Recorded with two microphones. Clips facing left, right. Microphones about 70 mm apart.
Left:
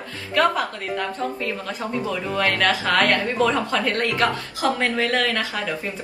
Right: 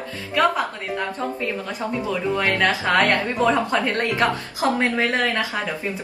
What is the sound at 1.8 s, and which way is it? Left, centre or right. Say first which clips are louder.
Speech: right 2 dB; right.